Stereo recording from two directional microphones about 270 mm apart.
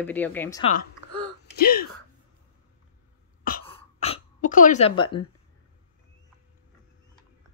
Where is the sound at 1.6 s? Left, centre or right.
Left.